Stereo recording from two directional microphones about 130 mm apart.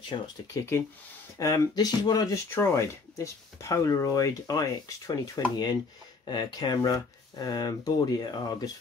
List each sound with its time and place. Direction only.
0.1 s speech: 35° left (ahead or behind)
0.5 s speech: 25° left (ahead or behind)